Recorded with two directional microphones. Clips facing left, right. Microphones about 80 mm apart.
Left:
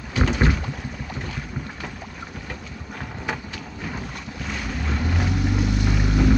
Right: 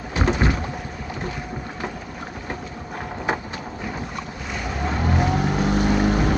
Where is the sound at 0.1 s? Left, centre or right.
Right.